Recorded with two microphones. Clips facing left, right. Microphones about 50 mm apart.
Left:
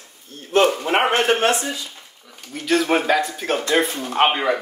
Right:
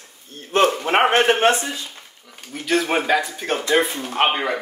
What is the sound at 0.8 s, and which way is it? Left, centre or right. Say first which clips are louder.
Speech: right 2 dB; right.